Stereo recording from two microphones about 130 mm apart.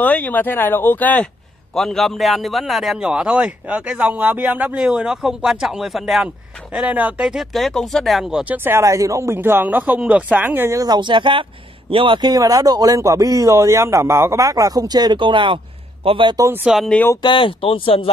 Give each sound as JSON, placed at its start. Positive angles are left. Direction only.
{"t": 0.0, "sound": "speech", "side_deg": 10}
{"t": 1.8, "sound": "speech", "side_deg": 0}
{"t": 8.6, "sound": "speech", "side_deg": -20}
{"t": 16.6, "sound": "speech", "side_deg": 0}
{"t": 17.2, "sound": "speech", "side_deg": 40}